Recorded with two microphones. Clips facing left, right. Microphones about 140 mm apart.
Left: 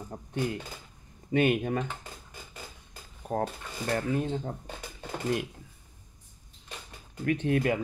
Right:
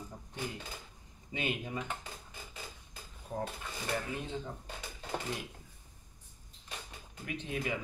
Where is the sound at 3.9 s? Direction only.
45° left (ahead or behind).